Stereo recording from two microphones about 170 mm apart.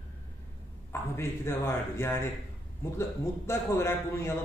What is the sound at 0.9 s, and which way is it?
A man's voice, 15° left (ahead or behind).